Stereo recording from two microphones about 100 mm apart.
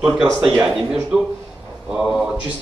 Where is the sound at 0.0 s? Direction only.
5° right (ahead or behind).